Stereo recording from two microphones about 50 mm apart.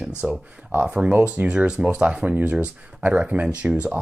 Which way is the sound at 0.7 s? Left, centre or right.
Right.